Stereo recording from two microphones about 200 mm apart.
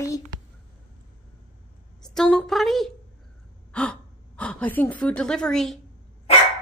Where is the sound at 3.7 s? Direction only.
5° left (ahead or behind).